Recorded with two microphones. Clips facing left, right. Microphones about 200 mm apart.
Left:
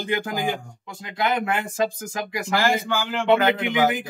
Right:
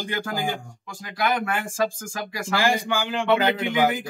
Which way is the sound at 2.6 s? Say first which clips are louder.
Right 1 dB; 15° right (ahead or behind).